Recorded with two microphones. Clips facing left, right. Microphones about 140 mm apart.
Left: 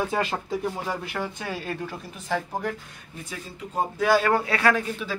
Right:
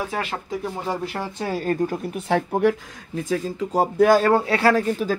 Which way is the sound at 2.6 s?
70° right (ahead or behind).